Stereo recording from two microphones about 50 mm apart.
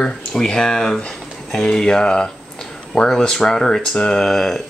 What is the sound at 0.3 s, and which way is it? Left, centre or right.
Speech, centre.